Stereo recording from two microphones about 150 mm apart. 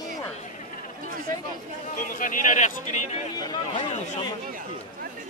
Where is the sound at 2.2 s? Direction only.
60° left (ahead or behind).